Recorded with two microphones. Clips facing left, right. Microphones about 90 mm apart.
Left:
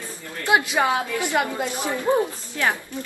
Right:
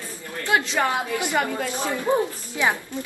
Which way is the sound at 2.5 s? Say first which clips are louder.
Right 1 dB; 15° right (ahead or behind).